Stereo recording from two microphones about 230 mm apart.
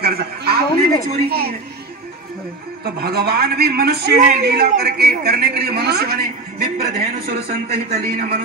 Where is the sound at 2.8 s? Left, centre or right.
Right.